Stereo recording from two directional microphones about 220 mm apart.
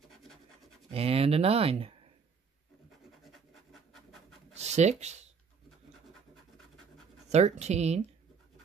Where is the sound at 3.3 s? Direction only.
Centre (ahead or behind).